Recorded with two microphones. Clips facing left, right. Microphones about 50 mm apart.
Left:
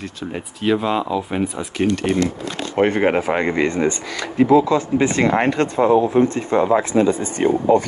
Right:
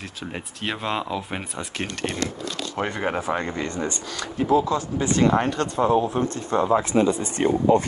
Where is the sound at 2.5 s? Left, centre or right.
Left.